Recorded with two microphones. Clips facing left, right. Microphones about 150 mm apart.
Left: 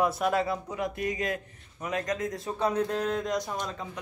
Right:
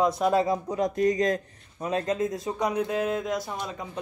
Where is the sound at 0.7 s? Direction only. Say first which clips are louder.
Right 7 dB; 40° right (ahead or behind); by 3.9 s 10° right (ahead or behind).